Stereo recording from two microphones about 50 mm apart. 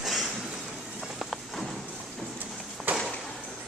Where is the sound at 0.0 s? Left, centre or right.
Centre.